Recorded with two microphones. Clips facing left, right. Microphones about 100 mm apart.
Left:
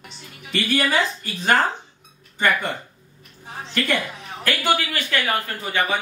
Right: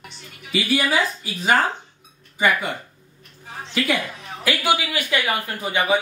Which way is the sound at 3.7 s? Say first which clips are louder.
Right 1 dB; 5° right (ahead or behind).